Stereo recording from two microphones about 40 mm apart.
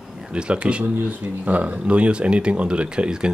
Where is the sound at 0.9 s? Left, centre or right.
Right.